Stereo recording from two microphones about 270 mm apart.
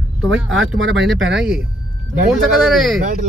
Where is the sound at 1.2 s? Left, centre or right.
Right.